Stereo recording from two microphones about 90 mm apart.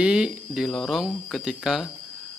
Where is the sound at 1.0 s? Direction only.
5° right (ahead or behind).